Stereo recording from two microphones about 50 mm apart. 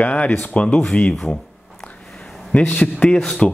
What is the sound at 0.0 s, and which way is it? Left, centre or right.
Speech, left.